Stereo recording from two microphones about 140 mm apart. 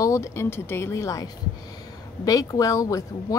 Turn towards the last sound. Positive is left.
turn(degrees=25)  # may be behind; listen again after turning